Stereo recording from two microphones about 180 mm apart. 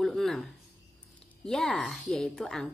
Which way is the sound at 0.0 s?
Centre (ahead or behind).